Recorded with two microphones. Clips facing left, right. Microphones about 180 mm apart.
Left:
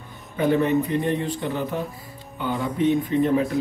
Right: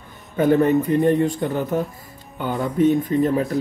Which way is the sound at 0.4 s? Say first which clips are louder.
Right 4 dB; 45° right (ahead or behind).